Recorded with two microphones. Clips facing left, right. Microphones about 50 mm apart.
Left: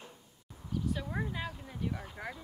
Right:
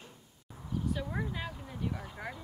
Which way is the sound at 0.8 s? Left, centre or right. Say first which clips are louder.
Right 1 dB; centre.